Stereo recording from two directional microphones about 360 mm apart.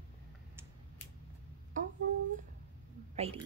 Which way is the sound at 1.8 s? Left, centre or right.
Right.